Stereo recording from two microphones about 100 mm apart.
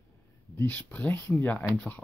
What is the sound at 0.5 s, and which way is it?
Speech, 20° left (ahead or behind).